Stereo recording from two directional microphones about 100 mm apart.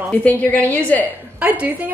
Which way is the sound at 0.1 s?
15° left (ahead or behind).